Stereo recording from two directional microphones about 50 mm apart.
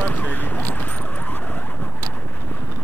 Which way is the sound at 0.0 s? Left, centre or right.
Left.